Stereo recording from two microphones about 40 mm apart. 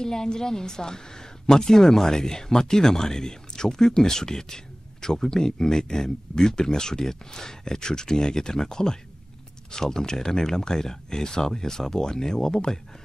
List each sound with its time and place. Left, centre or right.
0.0 s speech: centre